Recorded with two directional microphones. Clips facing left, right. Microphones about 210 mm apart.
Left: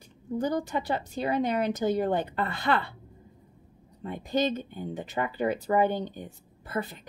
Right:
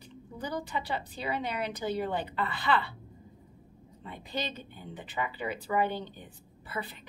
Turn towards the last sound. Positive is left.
turn(degrees=45)  # may be behind; listen again after turning